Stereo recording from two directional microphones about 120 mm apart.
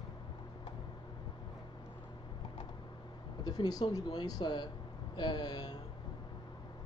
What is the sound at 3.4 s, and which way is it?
Speech, 35° left (ahead or behind).